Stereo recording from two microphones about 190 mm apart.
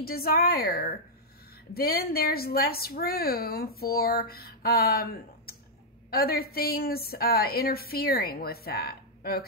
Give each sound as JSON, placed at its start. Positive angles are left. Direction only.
{"t": 0.0, "sound": "a woman's voice", "side_deg": 55}